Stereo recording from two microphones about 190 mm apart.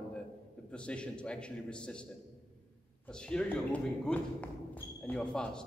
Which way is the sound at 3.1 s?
5° left (ahead or behind).